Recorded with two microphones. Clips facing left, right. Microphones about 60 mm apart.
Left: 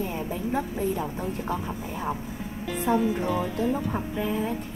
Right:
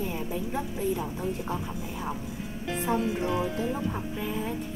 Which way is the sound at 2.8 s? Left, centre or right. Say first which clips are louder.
Left 4 dB; left.